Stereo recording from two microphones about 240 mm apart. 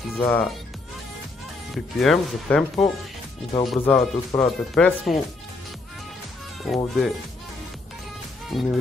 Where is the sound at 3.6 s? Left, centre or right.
Centre.